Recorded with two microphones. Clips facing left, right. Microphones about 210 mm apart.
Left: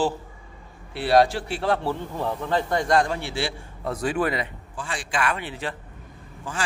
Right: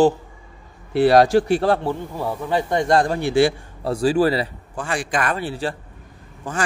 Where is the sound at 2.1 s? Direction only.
10° right (ahead or behind); by 3.1 s 30° right (ahead or behind).